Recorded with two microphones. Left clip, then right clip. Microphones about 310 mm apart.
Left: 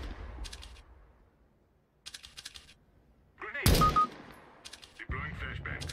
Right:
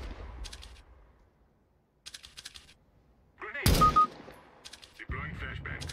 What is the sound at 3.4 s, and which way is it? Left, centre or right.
Gunshot, centre.